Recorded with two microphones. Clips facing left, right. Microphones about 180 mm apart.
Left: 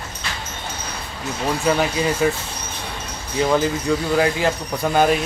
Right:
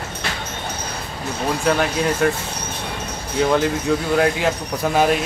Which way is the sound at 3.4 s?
Centre (ahead or behind).